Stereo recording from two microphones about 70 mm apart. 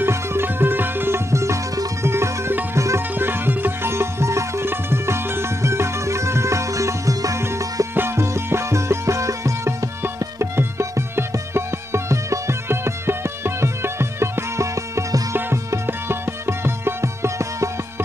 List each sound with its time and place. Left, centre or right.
0.0 s sitar: right
3.2 s music: right
7.9 s music: right
15.3 s music: right